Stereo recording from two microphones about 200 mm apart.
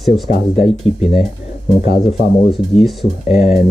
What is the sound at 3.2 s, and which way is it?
Mantra, 35° left (ahead or behind).